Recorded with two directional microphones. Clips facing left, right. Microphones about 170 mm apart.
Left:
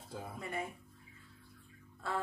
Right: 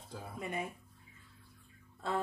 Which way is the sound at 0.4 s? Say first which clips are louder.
Right 2 dB; 20° right (ahead or behind).